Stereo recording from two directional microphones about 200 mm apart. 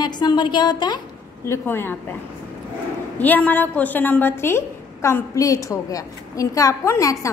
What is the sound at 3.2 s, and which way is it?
A woman's voice, 10° left (ahead or behind).